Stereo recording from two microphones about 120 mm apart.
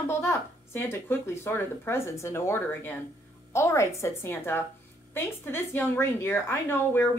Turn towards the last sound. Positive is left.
turn(degrees=20)  # may be behind; listen again after turning